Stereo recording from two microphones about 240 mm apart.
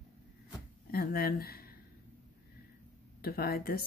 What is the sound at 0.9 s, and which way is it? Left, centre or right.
Speech, left.